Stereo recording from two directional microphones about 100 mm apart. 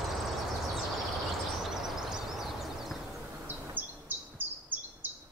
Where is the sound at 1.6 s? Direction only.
5° right (ahead or behind).